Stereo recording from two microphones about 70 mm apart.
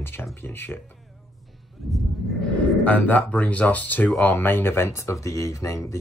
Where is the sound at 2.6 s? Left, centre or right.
Left.